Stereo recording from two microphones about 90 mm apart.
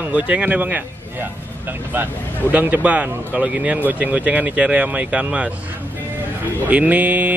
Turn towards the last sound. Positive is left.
turn(degrees=-15)  # may be behind; listen again after turning